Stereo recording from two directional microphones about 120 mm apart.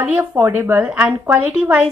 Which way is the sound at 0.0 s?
15° right (ahead or behind).